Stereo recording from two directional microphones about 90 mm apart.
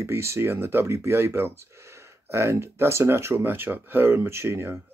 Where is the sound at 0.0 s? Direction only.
30° right (ahead or behind).